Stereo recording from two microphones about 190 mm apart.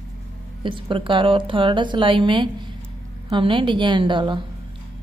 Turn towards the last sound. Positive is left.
turn(degrees=-25)  # may be behind; listen again after turning